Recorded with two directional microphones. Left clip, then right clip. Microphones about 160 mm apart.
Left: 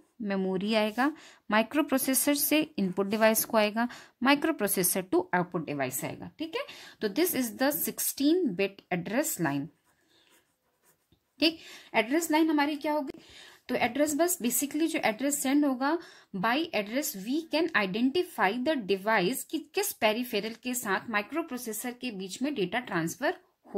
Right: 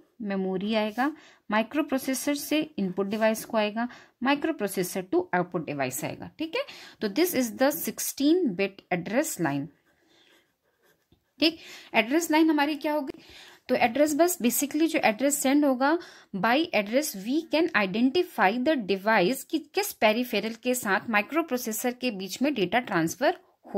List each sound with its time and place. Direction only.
0.2 s a woman's voice: centre (ahead or behind)
5.3 s a woman's voice: 5° right (ahead or behind)
11.3 s a woman's voice: 15° right (ahead or behind); by 23.3 s 35° right (ahead or behind)